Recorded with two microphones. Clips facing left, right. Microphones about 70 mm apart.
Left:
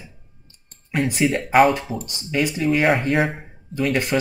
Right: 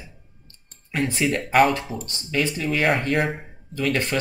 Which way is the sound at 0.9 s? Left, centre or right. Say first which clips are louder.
Left 3 dB; centre.